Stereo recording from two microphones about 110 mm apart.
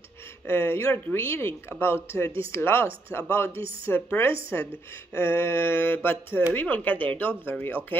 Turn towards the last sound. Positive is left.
turn(degrees=20)  # may be behind; listen again after turning